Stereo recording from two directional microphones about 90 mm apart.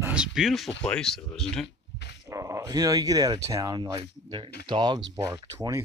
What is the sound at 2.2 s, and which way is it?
Speech, 35° right (ahead or behind).